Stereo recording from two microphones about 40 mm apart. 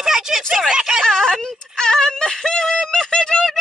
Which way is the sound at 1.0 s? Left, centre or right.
Centre.